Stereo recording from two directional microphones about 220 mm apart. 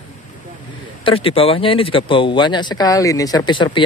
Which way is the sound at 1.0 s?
25° left (ahead or behind).